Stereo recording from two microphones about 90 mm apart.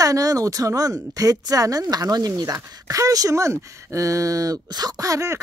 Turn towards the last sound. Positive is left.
turn(degrees=-35)  # may be behind; listen again after turning